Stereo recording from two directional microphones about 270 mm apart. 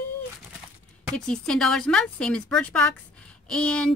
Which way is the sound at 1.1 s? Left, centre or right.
Centre.